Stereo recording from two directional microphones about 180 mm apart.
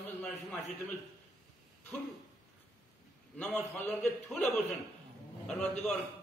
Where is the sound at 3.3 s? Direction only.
10° left (ahead or behind).